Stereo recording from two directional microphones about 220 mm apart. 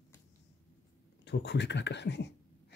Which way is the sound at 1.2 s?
50° left (ahead or behind).